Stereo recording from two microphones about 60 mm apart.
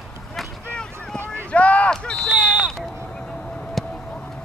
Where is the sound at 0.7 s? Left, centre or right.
Centre.